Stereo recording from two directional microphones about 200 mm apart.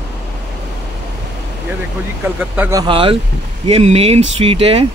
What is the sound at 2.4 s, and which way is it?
Speech, 10° right (ahead or behind).